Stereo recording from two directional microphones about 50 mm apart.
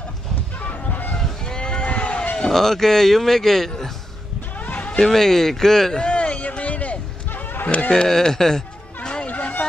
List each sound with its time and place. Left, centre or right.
0.6 s honk: left
1.1 s vehicle: centre
2.3 s speech: centre
4.6 s a sound: left
4.9 s speech: centre
6.0 s a sound: left
7.7 s speech: left
8.1 s chatter: centre
9.1 s a sound: left